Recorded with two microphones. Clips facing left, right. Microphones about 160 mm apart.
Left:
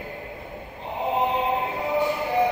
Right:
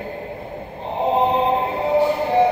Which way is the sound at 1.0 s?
30° right (ahead or behind).